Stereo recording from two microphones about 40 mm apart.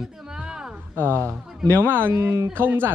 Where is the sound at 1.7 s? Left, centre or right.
Right.